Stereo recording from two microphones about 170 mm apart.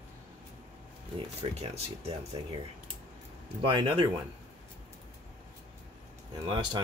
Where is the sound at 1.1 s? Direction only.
40° right (ahead or behind).